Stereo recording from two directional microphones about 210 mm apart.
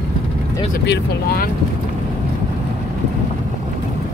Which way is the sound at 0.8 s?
50° left (ahead or behind).